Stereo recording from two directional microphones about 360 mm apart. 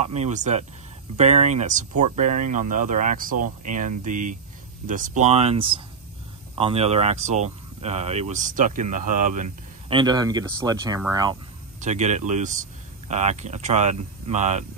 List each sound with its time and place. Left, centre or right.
0.0 s speech: centre